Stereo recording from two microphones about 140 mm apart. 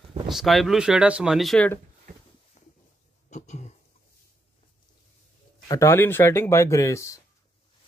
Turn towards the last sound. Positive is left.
turn(degrees=20)  # may be behind; listen again after turning